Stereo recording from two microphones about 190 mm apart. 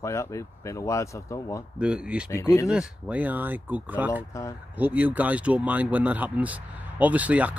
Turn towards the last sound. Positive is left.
turn(degrees=-5)  # may be behind; listen again after turning